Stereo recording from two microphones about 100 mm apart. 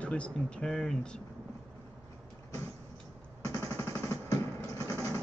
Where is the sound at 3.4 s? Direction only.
30° left (ahead or behind).